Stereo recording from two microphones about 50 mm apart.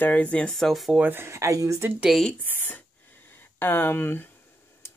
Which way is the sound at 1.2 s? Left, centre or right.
Right.